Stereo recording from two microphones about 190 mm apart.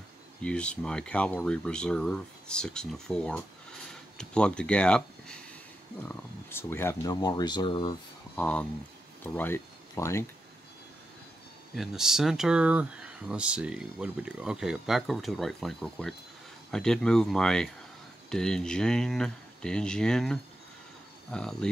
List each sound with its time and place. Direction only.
0.4 s speech: 5° left (ahead or behind)
6.0 s speech: 10° left (ahead or behind)
8.4 s speech: 5° left (ahead or behind)
11.7 s speech: centre (ahead or behind)